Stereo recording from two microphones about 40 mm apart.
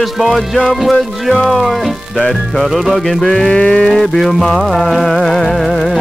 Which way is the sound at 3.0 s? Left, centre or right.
Centre.